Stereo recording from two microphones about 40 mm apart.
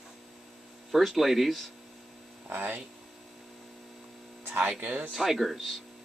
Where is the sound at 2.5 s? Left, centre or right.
Right.